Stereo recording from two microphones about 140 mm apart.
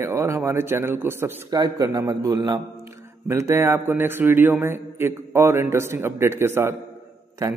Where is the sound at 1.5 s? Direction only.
30° right (ahead or behind).